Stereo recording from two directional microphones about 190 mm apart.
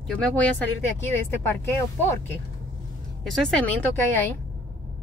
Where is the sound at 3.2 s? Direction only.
5° left (ahead or behind).